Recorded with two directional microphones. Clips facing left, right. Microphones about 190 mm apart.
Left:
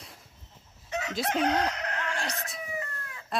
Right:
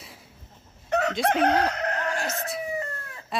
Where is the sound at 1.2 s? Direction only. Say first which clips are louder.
Right 3 dB; 60° right (ahead or behind); by 2.2 s 40° right (ahead or behind).